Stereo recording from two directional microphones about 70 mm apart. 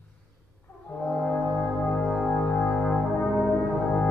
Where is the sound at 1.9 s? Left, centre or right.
Centre.